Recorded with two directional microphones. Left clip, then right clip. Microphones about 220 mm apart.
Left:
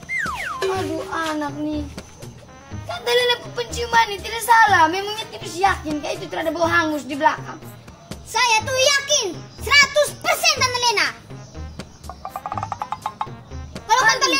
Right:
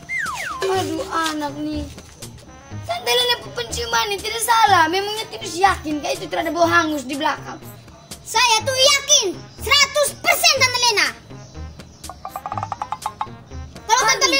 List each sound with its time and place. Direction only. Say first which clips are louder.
0.1 s music: even; centre (ahead or behind)
0.7 s music: right 4 dB; 45° right (ahead or behind)
3.0 s a child's voice: even; 45° right (ahead or behind)
12.1 s music: right 1 dB; centre (ahead or behind)
13.8 s music: even; 45° right (ahead or behind)